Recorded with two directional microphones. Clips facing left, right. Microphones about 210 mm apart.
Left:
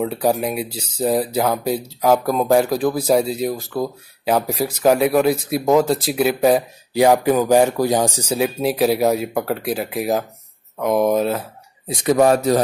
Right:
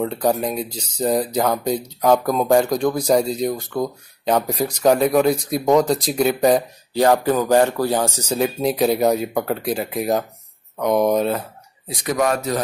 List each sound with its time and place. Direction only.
0.0 s speech: 5° left (ahead or behind)
11.9 s speech: 25° left (ahead or behind)